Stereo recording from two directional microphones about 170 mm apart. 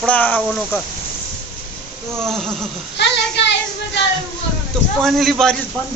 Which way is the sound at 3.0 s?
90° left.